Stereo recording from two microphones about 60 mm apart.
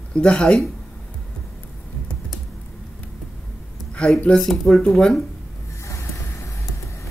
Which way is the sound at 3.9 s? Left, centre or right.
Centre.